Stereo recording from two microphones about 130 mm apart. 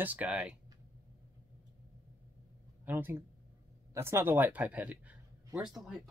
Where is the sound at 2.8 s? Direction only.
15° right (ahead or behind).